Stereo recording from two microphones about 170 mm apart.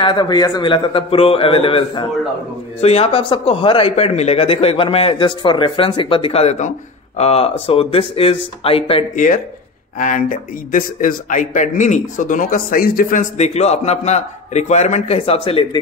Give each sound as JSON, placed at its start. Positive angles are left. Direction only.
{"t": 0.0, "sound": "a man's voice", "side_deg": 25}
{"t": 9.1, "sound": "speech", "side_deg": 50}